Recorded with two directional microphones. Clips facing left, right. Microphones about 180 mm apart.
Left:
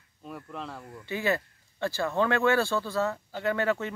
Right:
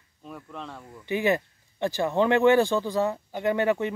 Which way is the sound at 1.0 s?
15° right (ahead or behind).